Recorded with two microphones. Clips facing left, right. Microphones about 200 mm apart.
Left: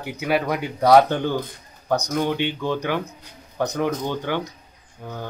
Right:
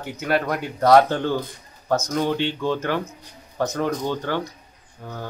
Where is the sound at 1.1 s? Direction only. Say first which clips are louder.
Even; 15° left (ahead or behind).